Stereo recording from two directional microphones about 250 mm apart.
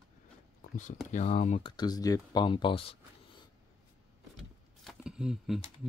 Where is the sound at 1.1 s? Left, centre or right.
Left.